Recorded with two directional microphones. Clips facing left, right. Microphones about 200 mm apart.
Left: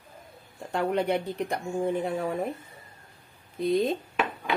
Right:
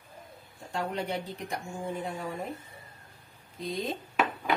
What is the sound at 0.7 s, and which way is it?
Speech, 60° left (ahead or behind).